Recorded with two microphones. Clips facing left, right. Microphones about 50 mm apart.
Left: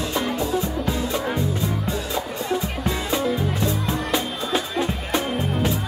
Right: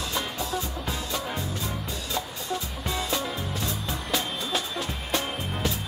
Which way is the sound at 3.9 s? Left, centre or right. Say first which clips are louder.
Left 6 dB; centre.